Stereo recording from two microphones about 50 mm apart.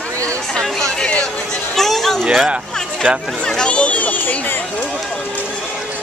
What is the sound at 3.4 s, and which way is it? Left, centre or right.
Speech, centre.